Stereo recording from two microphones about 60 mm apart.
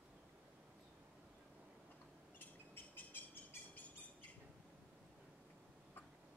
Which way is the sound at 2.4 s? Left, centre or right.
Left.